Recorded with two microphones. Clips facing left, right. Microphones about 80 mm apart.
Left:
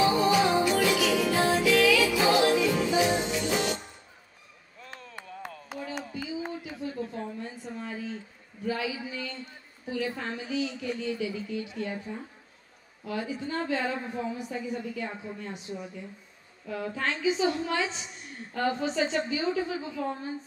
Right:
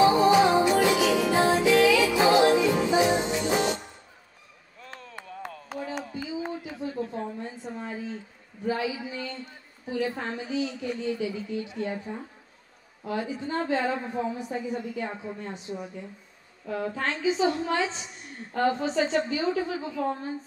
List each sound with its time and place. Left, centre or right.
0.0 s music: right
4.7 s chop: centre
6.1 s a sound: right
9.8 s a woman's voice: right